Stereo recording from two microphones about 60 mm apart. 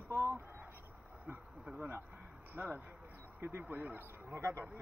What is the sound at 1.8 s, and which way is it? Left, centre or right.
A man's voice, right.